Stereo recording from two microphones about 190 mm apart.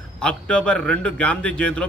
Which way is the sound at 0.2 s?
5° left (ahead or behind).